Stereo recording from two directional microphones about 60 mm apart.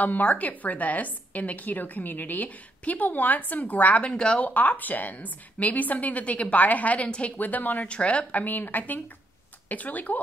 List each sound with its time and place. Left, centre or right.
0.0 s a woman's voice: left
4.5 s a woman's voice: left